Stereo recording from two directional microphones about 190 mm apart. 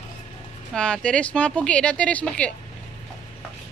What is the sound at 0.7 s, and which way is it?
A woman's voice, 5° left (ahead or behind).